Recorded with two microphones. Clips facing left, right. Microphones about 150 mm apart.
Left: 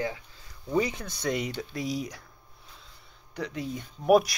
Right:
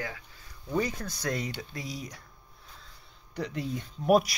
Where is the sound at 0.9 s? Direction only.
Centre (ahead or behind).